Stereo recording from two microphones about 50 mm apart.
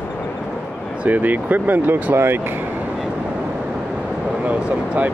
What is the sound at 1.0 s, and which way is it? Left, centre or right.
Speech, right.